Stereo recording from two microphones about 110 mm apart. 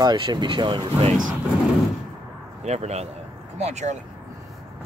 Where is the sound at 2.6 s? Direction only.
85° right.